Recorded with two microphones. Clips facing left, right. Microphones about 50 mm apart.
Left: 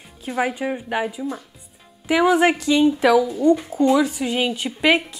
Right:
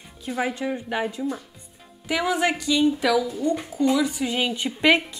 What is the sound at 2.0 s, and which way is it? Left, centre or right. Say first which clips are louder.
A woman's voice: left 7 dB; centre.